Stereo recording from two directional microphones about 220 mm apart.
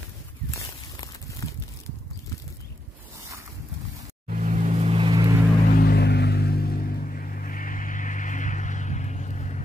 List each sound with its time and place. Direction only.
4.3 s vehicle: 35° right (ahead or behind)
5.7 s music: 45° left (ahead or behind)